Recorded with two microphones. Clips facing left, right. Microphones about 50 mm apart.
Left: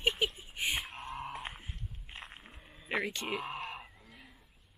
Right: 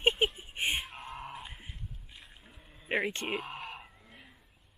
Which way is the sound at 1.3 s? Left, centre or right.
Left.